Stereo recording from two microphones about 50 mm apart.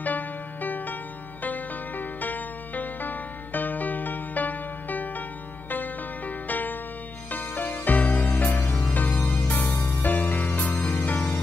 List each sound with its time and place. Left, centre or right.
0.0 s music: left